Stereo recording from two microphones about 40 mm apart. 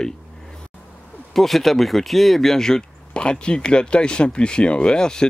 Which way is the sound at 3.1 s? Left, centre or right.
Left.